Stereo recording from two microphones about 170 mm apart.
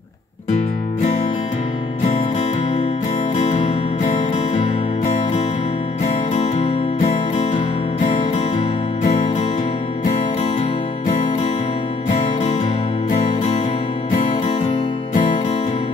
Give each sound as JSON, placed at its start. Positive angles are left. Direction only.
{"t": 3.3, "sound": "music", "side_deg": 45}
{"t": 13.1, "sound": "music", "side_deg": 45}